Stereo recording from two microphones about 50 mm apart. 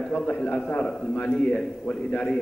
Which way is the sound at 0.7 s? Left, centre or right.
Centre.